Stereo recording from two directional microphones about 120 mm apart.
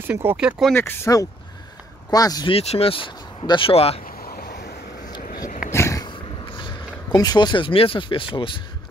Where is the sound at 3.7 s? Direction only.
55° left (ahead or behind).